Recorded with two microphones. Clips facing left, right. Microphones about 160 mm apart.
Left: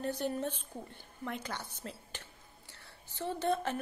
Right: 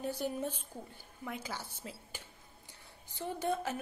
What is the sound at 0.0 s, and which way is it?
A woman's voice, 10° right (ahead or behind).